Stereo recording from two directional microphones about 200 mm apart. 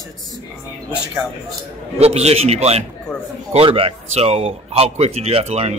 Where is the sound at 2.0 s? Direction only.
30° right (ahead or behind).